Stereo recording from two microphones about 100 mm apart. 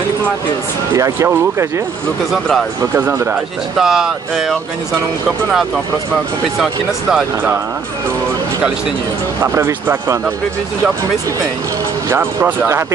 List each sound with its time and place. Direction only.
0.9 s speech: 35° right (ahead or behind)
3.0 s speech: 20° right (ahead or behind)
3.8 s speech: 5° right (ahead or behind)
6.6 s speech: 5° right (ahead or behind)
9.4 s speech: 25° right (ahead or behind)
12.1 s speech: 25° right (ahead or behind)